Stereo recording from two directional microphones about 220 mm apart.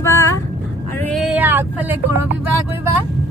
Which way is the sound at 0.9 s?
5° left (ahead or behind).